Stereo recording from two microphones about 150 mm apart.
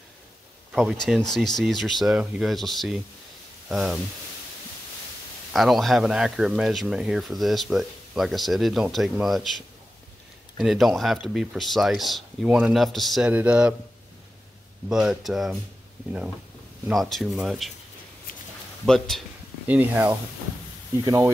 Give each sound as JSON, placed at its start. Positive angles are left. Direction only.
{"t": 1.0, "sound": "speech", "side_deg": 0}
{"t": 5.5, "sound": "speech", "side_deg": 0}
{"t": 10.6, "sound": "speech", "side_deg": 0}
{"t": 14.9, "sound": "speech", "side_deg": -5}
{"t": 16.9, "sound": "speech", "side_deg": 0}
{"t": 18.9, "sound": "speech", "side_deg": 5}
{"t": 19.7, "sound": "speech", "side_deg": -10}
{"t": 21.0, "sound": "speech", "side_deg": -25}